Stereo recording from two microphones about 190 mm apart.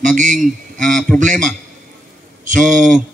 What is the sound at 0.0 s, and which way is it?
Speech, 40° right (ahead or behind).